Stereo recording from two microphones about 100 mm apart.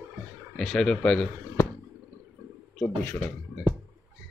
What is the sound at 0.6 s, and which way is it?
Speech, 5° left (ahead or behind).